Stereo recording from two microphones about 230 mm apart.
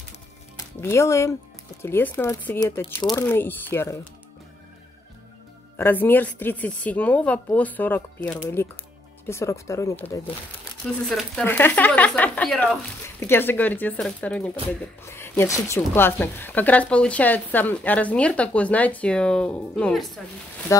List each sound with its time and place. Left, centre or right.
0.7 s speech: centre
5.8 s speech: centre